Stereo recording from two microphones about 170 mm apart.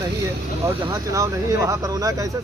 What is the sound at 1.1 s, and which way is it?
Speech, 20° right (ahead or behind).